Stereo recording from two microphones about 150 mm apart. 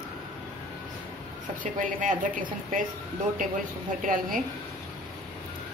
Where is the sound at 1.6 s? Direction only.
60° right (ahead or behind).